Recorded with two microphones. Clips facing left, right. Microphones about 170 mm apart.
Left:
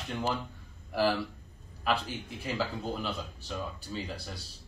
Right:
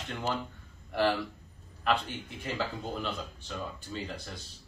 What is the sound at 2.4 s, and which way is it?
Speech, 5° left (ahead or behind).